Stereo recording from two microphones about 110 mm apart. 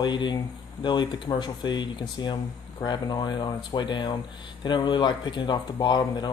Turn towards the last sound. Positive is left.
turn(degrees=45)  # may be behind; listen again after turning